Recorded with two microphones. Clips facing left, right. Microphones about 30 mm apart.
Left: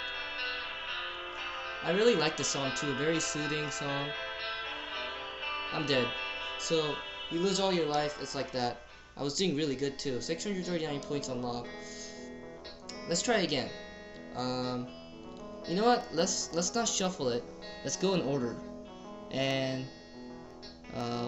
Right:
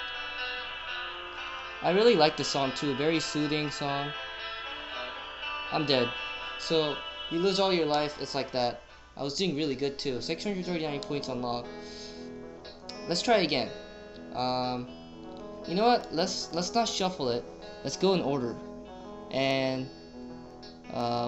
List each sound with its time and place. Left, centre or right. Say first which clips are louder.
0.1 s music: right 1 dB; centre
1.8 s speech: right 5 dB; right
4.1 s music: even; centre
5.7 s speech: right 5 dB; right
6.0 s music: right 1 dB; centre
6.4 s speech: right 4 dB; right
7.9 s speech: right 3 dB; right
9.2 s speech: right 1 dB; centre
9.7 s speech: right 3 dB; right
13.1 s speech: right 4 dB; right
20.9 s speech: right 6 dB; right